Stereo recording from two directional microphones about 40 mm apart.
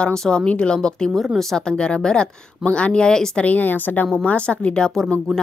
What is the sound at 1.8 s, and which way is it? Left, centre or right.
Speech, left.